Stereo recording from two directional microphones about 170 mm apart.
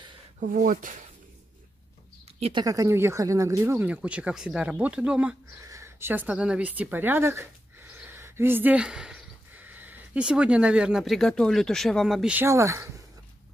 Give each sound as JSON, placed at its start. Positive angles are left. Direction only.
{"t": 0.5, "sound": "speech", "side_deg": -50}
{"t": 2.4, "sound": "speech", "side_deg": -25}